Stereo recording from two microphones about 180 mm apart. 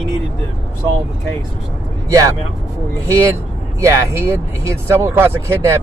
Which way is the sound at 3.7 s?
15° right (ahead or behind).